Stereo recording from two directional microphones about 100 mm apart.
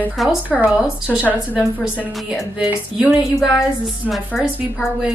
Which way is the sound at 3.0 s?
10° right (ahead or behind).